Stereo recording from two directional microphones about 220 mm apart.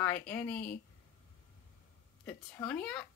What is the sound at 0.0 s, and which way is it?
Speech, 10° left (ahead or behind).